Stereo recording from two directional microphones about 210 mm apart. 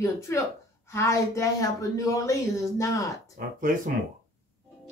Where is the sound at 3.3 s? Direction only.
40° right (ahead or behind).